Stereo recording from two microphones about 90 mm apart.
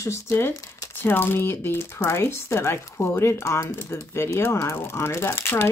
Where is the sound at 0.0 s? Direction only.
30° left (ahead or behind).